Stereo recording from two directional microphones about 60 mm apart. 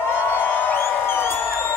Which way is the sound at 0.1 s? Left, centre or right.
Left.